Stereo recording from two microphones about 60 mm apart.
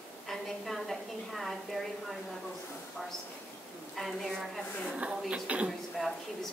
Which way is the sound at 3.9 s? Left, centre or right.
Centre.